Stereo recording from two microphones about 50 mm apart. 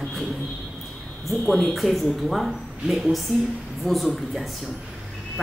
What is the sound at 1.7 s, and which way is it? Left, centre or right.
A woman's voice, centre.